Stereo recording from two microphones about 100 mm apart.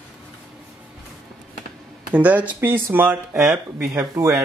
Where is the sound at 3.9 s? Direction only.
30° right (ahead or behind).